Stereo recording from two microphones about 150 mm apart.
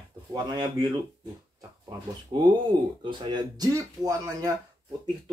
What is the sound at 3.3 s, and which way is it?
Speech, 25° right (ahead or behind).